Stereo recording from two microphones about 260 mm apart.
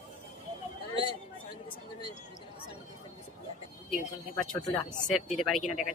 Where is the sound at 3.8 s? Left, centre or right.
Centre.